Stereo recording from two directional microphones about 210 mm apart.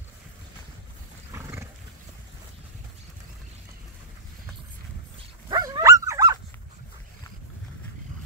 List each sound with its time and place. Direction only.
1.3 s roaring cats: 15° right (ahead or behind)
5.5 s dog: 15° right (ahead or behind)